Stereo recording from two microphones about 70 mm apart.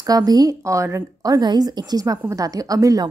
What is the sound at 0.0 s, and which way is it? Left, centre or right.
Speech, right.